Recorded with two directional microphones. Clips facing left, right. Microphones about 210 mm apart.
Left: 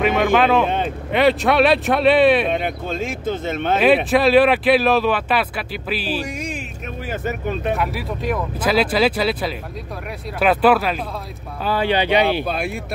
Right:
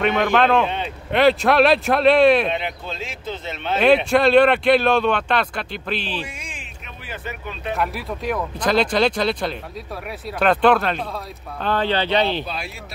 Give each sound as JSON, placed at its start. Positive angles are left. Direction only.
{"t": 0.0, "sound": "speech", "side_deg": 5}
{"t": 0.7, "sound": "speech", "side_deg": 50}
{"t": 1.1, "sound": "speech", "side_deg": 0}
{"t": 2.5, "sound": "speech", "side_deg": 45}
{"t": 3.8, "sound": "speech", "side_deg": 0}
{"t": 6.1, "sound": "speech", "side_deg": 40}
{"t": 7.7, "sound": "speech", "side_deg": 0}
{"t": 12.4, "sound": "speech", "side_deg": 55}